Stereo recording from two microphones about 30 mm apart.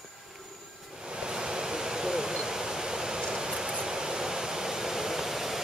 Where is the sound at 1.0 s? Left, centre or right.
Right; by 5.6 s centre.